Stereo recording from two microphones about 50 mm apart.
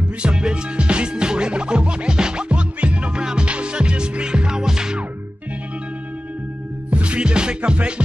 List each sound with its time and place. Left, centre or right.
0.2 s music: centre
6.9 s music: right